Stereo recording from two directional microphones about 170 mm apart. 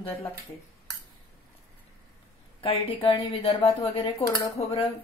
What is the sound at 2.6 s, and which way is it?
A woman's voice, 35° left (ahead or behind).